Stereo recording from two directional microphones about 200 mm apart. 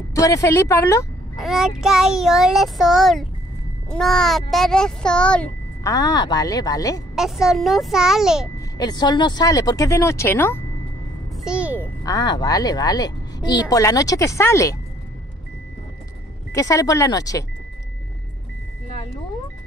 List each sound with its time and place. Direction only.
0.1 s a woman's voice: 15° left (ahead or behind)
1.4 s child singing: centre (ahead or behind)
5.9 s speech: 20° left (ahead or behind)
7.2 s child singing: centre (ahead or behind)
8.5 s a woman's voice: 20° left (ahead or behind)
11.3 s a sound: 5° right (ahead or behind)
12.0 s a woman's voice: 20° left (ahead or behind)
16.5 s a woman's voice: 15° left (ahead or behind)